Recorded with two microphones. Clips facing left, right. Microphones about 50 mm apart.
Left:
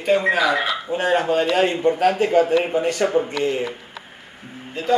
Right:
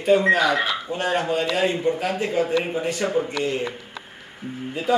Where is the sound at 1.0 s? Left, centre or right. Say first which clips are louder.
Left 5 dB; left.